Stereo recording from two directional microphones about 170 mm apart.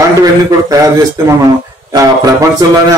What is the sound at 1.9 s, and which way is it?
Speech, 20° right (ahead or behind).